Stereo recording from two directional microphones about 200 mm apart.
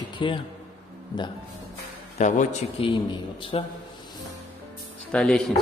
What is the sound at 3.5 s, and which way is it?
Speech, 25° left (ahead or behind).